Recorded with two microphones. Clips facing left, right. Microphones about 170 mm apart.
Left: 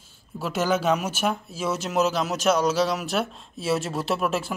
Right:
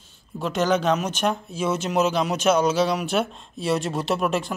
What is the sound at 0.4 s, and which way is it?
Speech, 5° left (ahead or behind).